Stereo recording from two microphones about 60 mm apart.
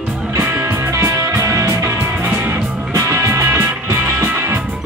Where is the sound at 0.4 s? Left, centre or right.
Right.